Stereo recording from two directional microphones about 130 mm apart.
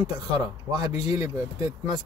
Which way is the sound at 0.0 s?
30° right (ahead or behind).